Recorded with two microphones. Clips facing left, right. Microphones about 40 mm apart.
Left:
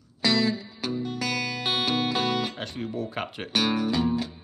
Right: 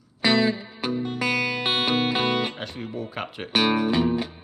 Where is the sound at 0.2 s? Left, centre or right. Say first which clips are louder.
Right 3 dB; right.